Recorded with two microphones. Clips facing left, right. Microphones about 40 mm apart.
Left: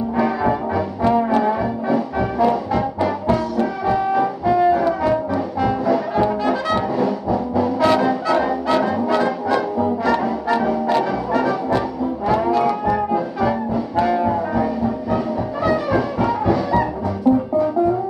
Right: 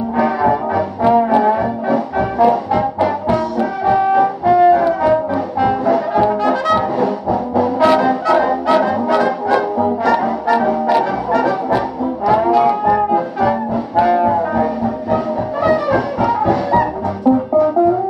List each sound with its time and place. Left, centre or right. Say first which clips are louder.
0.7 s brass instrument: right 5 dB; centre
4.8 s brass instrument: right 4 dB; centre
7.0 s music: right 3 dB; right
7.8 s brass instrument: right 4 dB; centre
8.1 s music: right 4 dB; centre
9.1 s brass instrument: right 5 dB; centre
12.3 s brass instrument: right 5 dB; centre
15.7 s brass instrument: right 3 dB; right
16.3 s music: right 4 dB; right
17.3 s music: right 3 dB; centre